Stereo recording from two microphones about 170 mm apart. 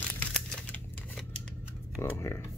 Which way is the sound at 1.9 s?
15° left (ahead or behind).